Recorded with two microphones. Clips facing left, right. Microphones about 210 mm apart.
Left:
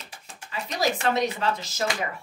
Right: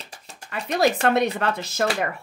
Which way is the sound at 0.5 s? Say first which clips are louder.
Right 6 dB; 65° right (ahead or behind).